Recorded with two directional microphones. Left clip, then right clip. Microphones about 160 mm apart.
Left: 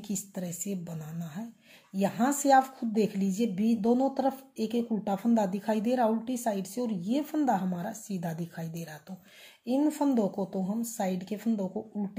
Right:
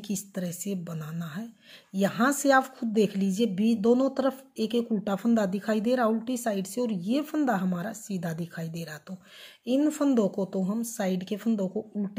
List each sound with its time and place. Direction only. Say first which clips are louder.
0.0 s speech: right 3 dB; 35° right (ahead or behind)